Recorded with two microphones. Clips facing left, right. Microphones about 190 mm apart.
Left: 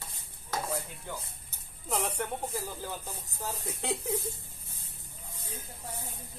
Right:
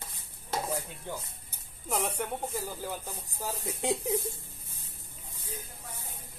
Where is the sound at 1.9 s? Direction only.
10° right (ahead or behind).